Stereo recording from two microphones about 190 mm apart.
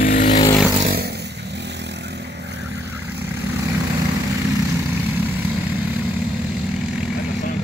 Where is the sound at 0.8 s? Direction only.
50° right (ahead or behind).